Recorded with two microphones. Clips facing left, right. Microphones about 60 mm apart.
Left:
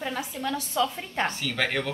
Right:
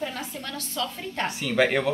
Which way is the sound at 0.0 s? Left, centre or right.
Centre.